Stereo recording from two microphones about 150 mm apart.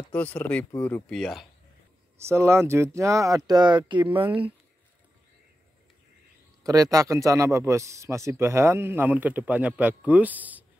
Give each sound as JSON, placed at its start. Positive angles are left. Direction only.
{"t": 0.1, "sound": "speech", "side_deg": 10}
{"t": 2.1, "sound": "speech", "side_deg": -15}
{"t": 6.6, "sound": "a man's voice", "side_deg": -25}